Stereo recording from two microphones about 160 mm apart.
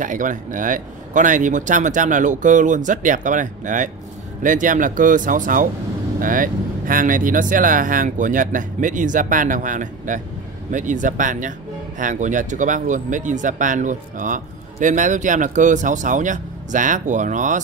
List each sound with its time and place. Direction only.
0.0 s speech: 55° right (ahead or behind)